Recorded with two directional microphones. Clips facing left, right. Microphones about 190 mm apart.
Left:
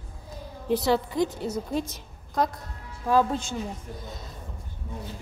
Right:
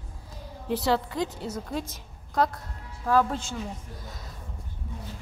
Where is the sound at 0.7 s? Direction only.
15° left (ahead or behind).